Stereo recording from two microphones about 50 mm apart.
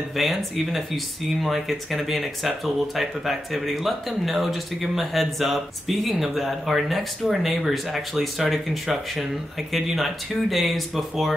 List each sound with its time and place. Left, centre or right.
0.1 s speech: centre